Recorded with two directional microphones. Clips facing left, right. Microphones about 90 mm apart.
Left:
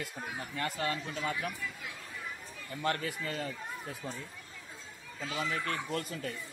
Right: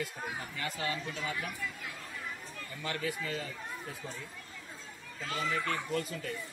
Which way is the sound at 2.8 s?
45° left (ahead or behind).